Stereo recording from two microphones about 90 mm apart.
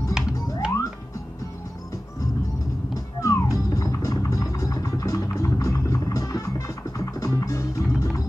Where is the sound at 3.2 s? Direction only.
35° left (ahead or behind).